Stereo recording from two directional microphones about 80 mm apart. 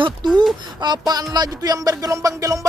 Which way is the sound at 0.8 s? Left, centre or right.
Right.